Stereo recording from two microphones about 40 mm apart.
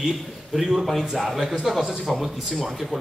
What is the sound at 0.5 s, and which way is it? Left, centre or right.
A man's voice, centre.